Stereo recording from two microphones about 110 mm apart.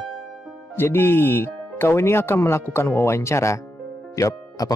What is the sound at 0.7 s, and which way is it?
Speech, 20° left (ahead or behind).